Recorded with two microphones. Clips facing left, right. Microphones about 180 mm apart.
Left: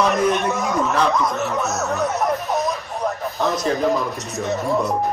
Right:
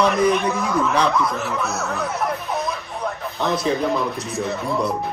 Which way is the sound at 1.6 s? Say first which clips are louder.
Left 3 dB; 30° right (ahead or behind).